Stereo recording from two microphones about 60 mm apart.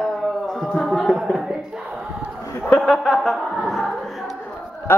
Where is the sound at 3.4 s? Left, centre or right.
Centre.